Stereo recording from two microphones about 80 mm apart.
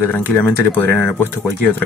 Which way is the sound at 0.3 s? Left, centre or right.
Left.